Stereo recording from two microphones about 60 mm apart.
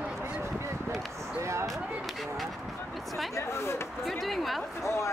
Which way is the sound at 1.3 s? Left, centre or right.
Right.